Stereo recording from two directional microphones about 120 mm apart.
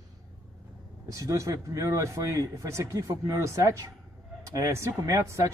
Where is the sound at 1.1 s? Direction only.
25° right (ahead or behind).